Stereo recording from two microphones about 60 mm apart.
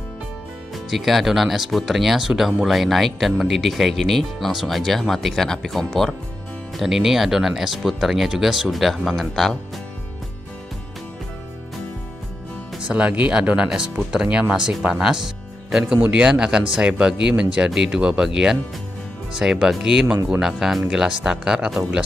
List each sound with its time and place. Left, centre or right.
0.7 s speech: centre
12.8 s speech: centre
16.0 s speech: centre